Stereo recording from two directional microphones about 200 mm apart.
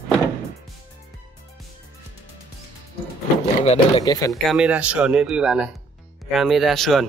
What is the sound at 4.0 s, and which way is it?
Speech, 15° left (ahead or behind).